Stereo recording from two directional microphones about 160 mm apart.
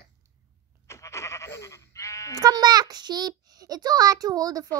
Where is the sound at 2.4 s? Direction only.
25° right (ahead or behind).